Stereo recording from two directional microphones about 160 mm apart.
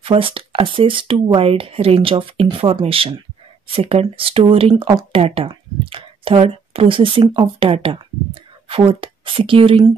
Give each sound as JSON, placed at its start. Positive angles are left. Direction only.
{"t": 0.0, "sound": "speech", "side_deg": -35}